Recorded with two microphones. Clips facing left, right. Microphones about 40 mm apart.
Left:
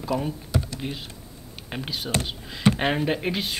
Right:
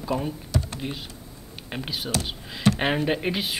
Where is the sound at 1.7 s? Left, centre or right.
Centre.